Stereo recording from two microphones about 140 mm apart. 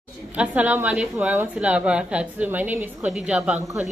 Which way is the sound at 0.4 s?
10° right (ahead or behind).